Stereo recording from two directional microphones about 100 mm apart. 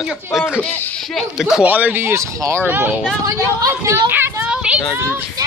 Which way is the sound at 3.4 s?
30° right (ahead or behind).